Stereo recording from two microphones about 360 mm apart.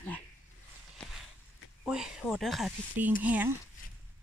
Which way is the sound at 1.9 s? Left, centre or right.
Centre.